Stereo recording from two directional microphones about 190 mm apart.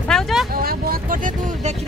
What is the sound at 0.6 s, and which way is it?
Speech, 50° right (ahead or behind).